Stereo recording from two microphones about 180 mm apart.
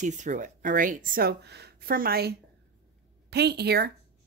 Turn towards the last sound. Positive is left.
turn(degrees=-65)  # may be behind; listen again after turning